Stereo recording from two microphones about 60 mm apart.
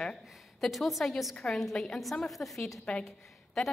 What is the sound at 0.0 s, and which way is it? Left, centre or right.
A woman's voice, centre.